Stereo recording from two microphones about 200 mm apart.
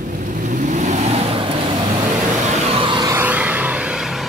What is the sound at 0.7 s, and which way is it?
Vehicle, 35° right (ahead or behind).